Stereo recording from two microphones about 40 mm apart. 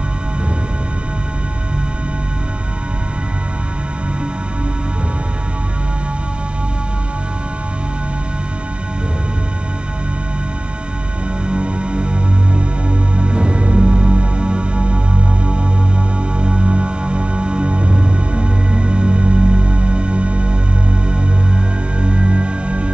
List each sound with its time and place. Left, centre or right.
11.4 s music: right
22.0 s music: right